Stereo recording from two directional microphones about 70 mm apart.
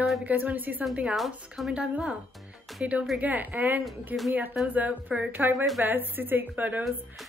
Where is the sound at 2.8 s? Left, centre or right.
Centre.